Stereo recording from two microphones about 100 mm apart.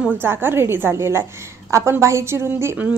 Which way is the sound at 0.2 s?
20° right (ahead or behind).